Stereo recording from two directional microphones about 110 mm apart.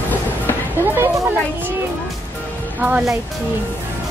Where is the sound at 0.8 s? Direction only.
20° right (ahead or behind).